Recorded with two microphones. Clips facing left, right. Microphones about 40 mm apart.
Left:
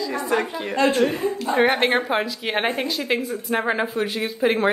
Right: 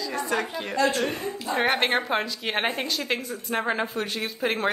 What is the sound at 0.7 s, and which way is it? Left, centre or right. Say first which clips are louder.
Speech: left 4 dB; left.